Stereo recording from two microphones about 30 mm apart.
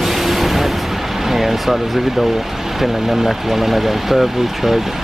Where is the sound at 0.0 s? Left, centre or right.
Centre.